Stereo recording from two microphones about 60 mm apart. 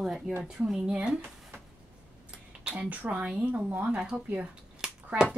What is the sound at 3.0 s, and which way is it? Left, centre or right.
A woman's voice, right.